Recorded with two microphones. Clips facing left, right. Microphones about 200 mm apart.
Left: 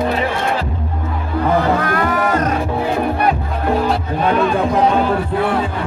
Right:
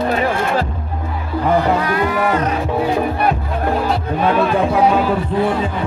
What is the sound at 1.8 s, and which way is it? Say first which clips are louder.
Speech: even; 50° left (ahead or behind).